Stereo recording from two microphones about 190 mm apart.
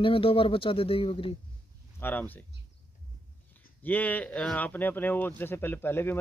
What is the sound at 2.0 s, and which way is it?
Speech, 10° left (ahead or behind).